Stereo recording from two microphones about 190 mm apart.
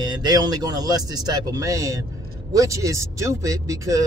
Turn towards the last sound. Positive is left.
turn(degrees=-15)  # may be behind; listen again after turning